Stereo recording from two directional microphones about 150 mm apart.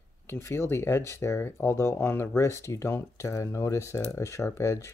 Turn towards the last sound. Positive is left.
turn(degrees=20)  # may be behind; listen again after turning